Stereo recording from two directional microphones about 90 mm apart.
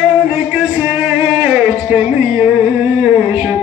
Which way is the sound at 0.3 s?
10° right (ahead or behind).